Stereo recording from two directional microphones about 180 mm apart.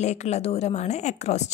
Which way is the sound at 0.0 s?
40° left (ahead or behind).